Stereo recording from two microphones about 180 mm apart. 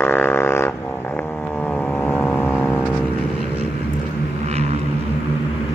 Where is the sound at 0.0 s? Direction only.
10° left (ahead or behind).